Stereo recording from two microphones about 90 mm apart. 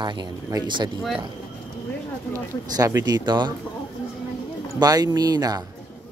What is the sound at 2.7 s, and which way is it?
Speech, 45° right (ahead or behind).